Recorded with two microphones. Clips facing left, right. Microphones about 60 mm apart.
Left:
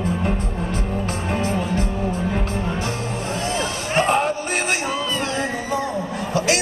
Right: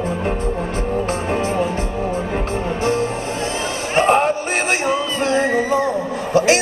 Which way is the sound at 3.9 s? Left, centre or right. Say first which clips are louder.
Right 4 dB; right.